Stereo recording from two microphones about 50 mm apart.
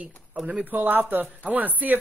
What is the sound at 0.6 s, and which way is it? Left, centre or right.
Speech, right.